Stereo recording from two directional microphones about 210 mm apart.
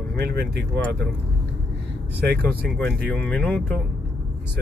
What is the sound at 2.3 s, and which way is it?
Speech, 50° right (ahead or behind).